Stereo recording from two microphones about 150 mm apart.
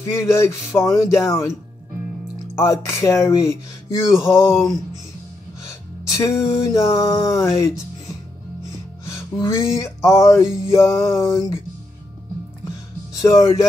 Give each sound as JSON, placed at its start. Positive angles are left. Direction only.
{"t": 0.1, "sound": "music", "side_deg": 20}
{"t": 2.5, "sound": "music", "side_deg": 20}
{"t": 5.7, "sound": "music", "side_deg": 20}
{"t": 9.1, "sound": "music", "side_deg": 20}
{"t": 13.1, "sound": "music", "side_deg": 20}